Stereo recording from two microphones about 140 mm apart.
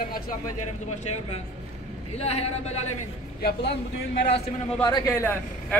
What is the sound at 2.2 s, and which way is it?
Speech, 45° left (ahead or behind).